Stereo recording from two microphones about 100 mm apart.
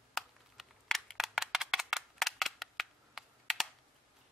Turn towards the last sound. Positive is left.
turn(degrees=0)  # may be behind; listen again after turning